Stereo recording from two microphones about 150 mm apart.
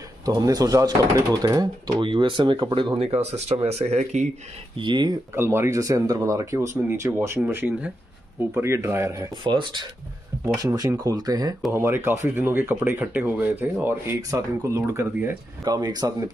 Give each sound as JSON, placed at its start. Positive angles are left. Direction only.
{"t": 0.2, "sound": "speech", "side_deg": -25}
{"t": 4.7, "sound": "speech", "side_deg": -30}
{"t": 5.3, "sound": "speech", "side_deg": -15}